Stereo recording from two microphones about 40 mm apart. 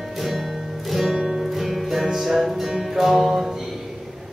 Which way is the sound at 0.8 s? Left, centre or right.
Centre.